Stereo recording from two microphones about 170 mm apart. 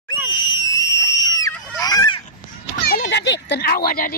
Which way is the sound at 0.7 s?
20° left (ahead or behind).